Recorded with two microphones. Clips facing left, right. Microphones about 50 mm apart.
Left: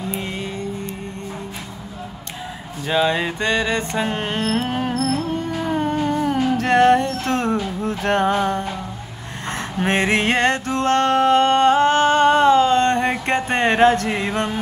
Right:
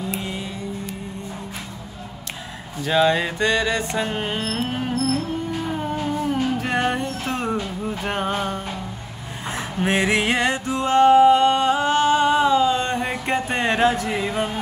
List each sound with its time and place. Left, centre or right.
0.3 s music: centre
2.8 s music: centre
9.8 s music: centre
10.5 s music: centre
10.9 s music: left
12.7 s a sound: centre
13.3 s music: left